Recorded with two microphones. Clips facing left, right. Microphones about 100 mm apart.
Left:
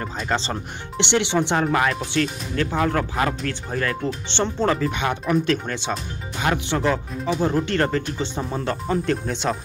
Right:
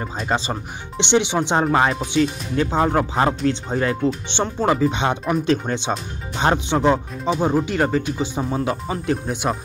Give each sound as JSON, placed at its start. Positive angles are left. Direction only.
{"t": 0.0, "sound": "speech", "side_deg": -15}